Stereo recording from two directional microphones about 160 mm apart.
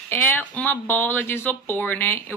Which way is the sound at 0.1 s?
10° left (ahead or behind).